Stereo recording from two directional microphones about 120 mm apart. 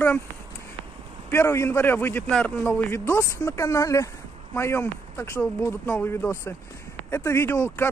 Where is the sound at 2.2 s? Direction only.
5° left (ahead or behind).